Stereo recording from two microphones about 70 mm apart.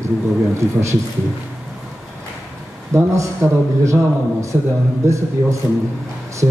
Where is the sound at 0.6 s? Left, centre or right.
Right.